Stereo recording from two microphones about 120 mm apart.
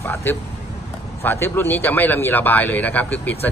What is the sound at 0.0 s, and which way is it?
A man's voice, 20° left (ahead or behind).